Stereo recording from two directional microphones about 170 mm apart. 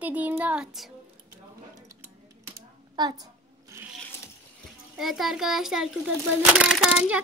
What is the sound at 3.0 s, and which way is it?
Speech, 25° right (ahead or behind).